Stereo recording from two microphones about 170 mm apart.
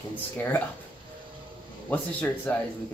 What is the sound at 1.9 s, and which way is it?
Speech, 10° left (ahead or behind).